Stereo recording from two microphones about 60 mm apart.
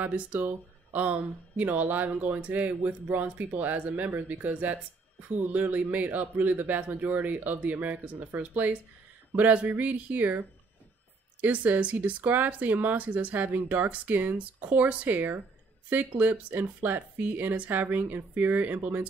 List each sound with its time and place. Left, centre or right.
0.1 s speech: right
11.4 s speech: right